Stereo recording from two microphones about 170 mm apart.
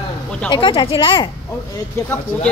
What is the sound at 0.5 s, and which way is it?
Speech, 30° left (ahead or behind).